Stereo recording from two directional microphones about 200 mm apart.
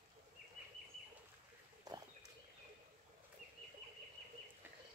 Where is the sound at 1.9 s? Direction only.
20° right (ahead or behind).